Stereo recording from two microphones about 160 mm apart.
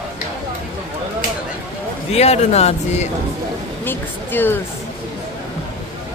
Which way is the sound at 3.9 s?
15° left (ahead or behind).